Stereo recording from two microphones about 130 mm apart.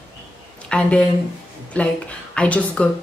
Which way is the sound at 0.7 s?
10° left (ahead or behind).